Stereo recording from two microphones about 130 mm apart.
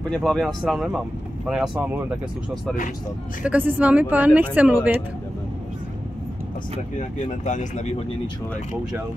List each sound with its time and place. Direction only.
0.1 s speech: 5° left (ahead or behind)
3.4 s speech: 15° right (ahead or behind)
7.4 s speech: 65° left (ahead or behind)